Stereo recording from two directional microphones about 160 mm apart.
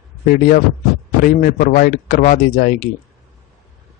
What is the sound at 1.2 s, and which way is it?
Speech, 60° left (ahead or behind).